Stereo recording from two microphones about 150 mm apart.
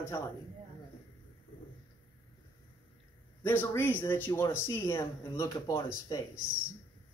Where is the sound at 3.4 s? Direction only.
15° left (ahead or behind).